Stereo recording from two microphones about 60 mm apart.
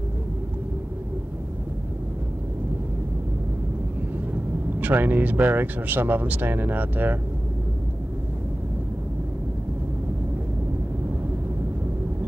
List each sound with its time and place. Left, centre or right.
4.7 s speech: right